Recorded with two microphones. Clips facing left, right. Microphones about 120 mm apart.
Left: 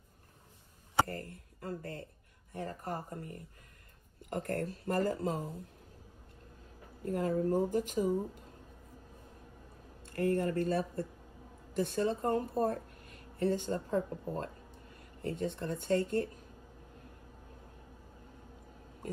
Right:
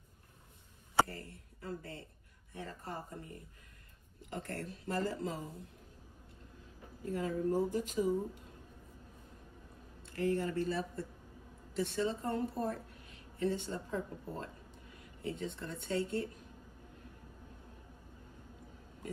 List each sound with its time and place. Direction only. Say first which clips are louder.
1.0 s a sound: left 6 dB; 50° left (ahead or behind)
2.5 s speech: left 5 dB; 50° left (ahead or behind)
7.1 s speech: left 3 dB; 50° left (ahead or behind)
10.0 s a woman's voice: left 3 dB; 50° left (ahead or behind)